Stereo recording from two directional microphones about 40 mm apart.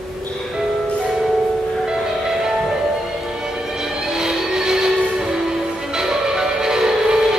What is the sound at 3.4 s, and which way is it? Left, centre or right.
Music, centre.